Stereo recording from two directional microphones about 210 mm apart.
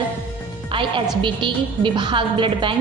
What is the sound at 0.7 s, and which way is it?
A woman's voice, 25° right (ahead or behind).